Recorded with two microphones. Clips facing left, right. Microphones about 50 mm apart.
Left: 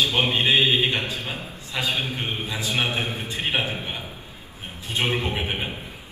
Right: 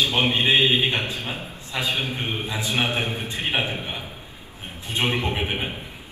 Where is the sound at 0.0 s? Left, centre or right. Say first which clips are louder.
Even; right.